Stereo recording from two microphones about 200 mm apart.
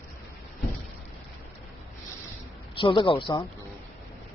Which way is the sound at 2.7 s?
25° left (ahead or behind).